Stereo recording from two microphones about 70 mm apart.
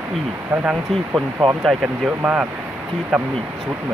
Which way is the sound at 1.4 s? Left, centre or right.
Centre.